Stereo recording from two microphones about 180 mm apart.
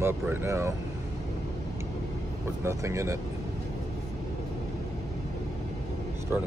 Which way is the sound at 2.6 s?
15° right (ahead or behind).